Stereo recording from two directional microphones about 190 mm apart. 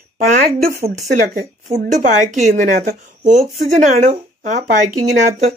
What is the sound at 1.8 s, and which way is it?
Speech, 40° right (ahead or behind).